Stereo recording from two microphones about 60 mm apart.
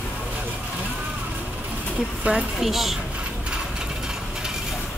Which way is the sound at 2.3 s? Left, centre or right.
Right.